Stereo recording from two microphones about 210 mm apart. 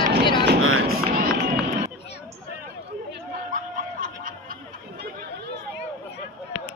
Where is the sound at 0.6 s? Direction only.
85° right.